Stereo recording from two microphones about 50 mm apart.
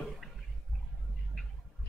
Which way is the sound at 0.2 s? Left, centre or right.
Centre.